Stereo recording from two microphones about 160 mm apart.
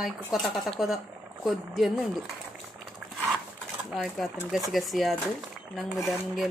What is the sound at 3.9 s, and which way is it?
Speech, centre (ahead or behind).